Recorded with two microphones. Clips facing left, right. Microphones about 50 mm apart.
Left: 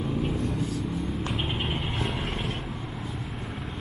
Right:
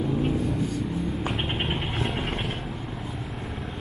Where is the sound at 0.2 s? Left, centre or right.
Centre.